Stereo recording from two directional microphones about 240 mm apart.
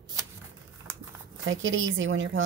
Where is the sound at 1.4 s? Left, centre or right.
Right.